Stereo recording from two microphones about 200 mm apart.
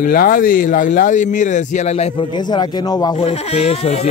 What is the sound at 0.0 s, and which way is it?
Speech, 45° left (ahead or behind).